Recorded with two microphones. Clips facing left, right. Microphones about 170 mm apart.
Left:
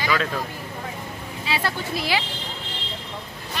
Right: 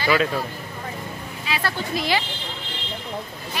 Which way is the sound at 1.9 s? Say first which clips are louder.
Right 3 dB; 5° left (ahead or behind).